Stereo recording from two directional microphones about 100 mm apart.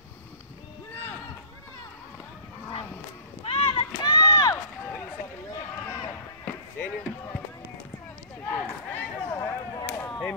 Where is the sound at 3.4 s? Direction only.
65° left (ahead or behind).